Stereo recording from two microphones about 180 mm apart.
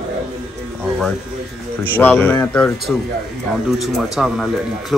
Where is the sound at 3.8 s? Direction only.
Centre (ahead or behind).